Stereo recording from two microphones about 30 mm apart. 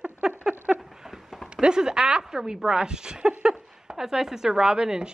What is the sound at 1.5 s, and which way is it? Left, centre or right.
Speech, right.